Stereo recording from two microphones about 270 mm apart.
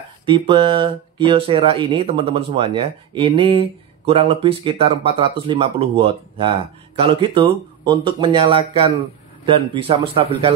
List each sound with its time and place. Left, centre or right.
0.2 s speech: centre